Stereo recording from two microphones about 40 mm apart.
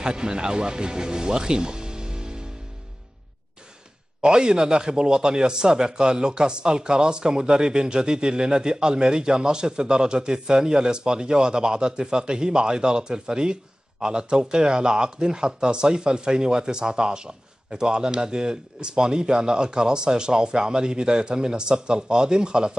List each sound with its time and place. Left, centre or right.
0.0 s speech: right
4.2 s speech: right